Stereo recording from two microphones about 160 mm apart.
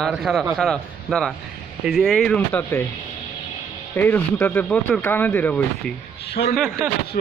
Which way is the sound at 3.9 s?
10° left (ahead or behind).